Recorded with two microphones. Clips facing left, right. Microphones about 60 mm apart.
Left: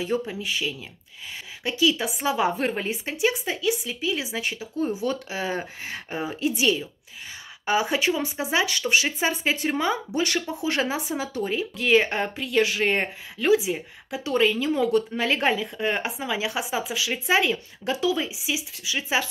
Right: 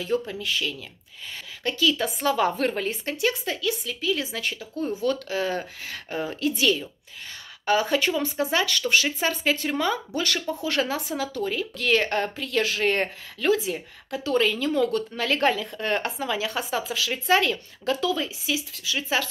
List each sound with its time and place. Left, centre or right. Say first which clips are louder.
0.3 s speech: even; centre